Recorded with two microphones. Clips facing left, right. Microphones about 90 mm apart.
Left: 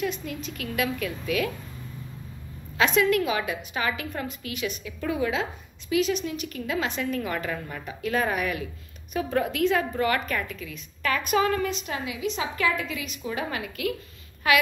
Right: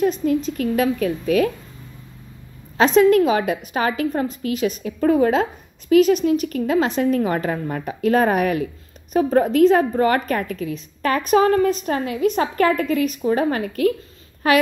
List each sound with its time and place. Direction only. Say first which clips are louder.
0.0 s a woman's voice: right 12 dB; 40° right (ahead or behind)
2.8 s a woman's voice: right 8 dB; 35° right (ahead or behind)